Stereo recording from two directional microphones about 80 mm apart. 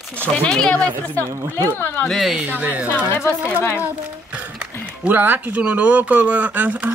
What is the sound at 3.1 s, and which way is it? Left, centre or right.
Speech, left.